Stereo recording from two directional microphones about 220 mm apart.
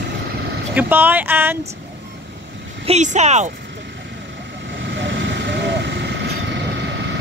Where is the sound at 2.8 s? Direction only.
30° right (ahead or behind).